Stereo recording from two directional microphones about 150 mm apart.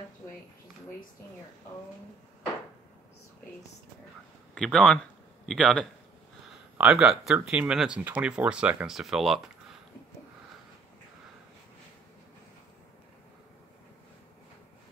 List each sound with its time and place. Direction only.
4.6 s speech: 5° left (ahead or behind)